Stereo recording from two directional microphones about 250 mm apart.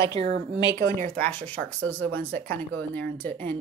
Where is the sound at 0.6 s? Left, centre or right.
Centre.